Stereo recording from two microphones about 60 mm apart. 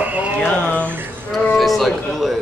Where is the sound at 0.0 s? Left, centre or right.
Right.